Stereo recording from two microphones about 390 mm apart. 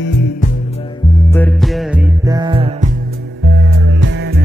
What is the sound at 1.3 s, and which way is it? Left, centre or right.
Music, centre.